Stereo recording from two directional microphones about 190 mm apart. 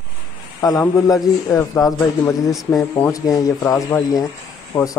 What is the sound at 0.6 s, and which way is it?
A man's voice, 20° left (ahead or behind).